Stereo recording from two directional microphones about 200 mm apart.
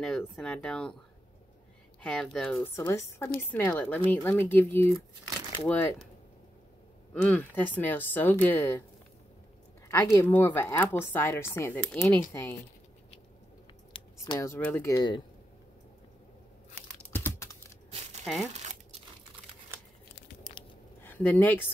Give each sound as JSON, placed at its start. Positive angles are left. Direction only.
{"t": 0.0, "sound": "speech", "side_deg": 5}
{"t": 2.0, "sound": "speech", "side_deg": 5}
{"t": 7.2, "sound": "speech", "side_deg": 10}
{"t": 9.8, "sound": "speech", "side_deg": 10}
{"t": 13.9, "sound": "speech", "side_deg": 20}
{"t": 17.1, "sound": "computer keyboard", "side_deg": 10}
{"t": 18.2, "sound": "speech", "side_deg": 0}
{"t": 21.0, "sound": "speech", "side_deg": 10}